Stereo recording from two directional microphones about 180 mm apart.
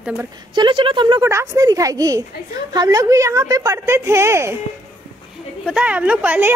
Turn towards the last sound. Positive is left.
turn(degrees=-10)  # may be behind; listen again after turning